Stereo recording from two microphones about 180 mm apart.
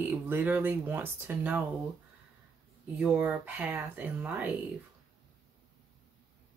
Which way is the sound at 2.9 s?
10° right (ahead or behind).